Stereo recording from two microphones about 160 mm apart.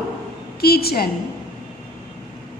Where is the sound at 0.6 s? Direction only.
75° left (ahead or behind).